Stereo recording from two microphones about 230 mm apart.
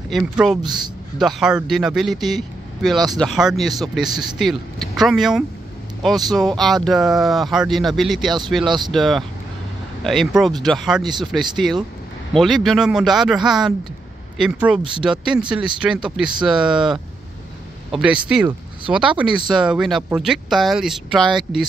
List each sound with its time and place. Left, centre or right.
0.1 s speech: centre
0.6 s a man's voice: centre
1.2 s speech: centre
8.6 s speech: centre
8.9 s speech: centre